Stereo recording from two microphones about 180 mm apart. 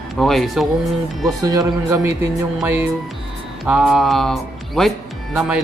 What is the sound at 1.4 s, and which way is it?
A man's voice, 20° right (ahead or behind).